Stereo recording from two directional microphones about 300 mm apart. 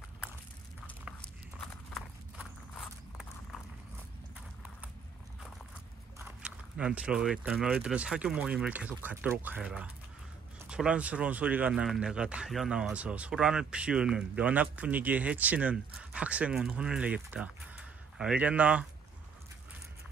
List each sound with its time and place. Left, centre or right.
0.8 s clip-clop: centre
6.1 s speech: centre